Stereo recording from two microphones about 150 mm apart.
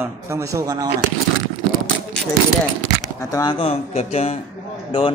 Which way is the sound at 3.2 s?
25° left (ahead or behind).